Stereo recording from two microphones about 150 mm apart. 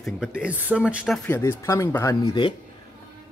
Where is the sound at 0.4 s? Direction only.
10° right (ahead or behind).